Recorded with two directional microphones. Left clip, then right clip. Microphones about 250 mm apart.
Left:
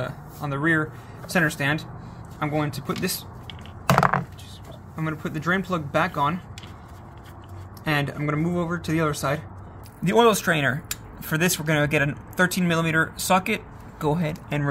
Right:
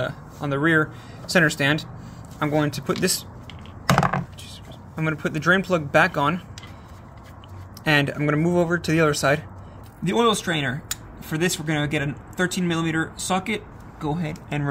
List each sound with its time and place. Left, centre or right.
0.0 s speech: centre
4.9 s speech: right
7.8 s speech: right
10.0 s speech: centre